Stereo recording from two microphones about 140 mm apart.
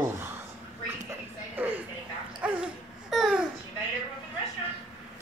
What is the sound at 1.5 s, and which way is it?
Television, 15° right (ahead or behind).